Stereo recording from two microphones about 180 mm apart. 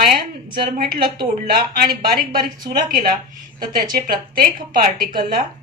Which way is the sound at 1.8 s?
55° right (ahead or behind).